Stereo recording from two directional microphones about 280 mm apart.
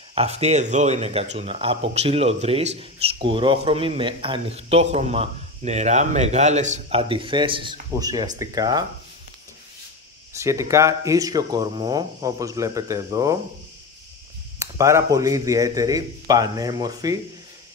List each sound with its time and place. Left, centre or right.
0.1 s speech: right
10.3 s speech: centre
14.6 s speech: centre